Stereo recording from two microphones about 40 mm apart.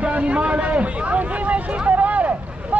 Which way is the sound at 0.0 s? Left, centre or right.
Right.